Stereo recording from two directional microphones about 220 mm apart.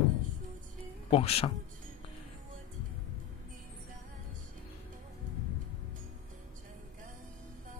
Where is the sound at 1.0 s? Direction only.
25° left (ahead or behind).